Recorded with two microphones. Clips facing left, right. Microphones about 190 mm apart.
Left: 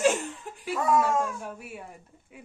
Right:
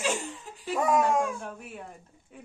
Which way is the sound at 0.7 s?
15° right (ahead or behind).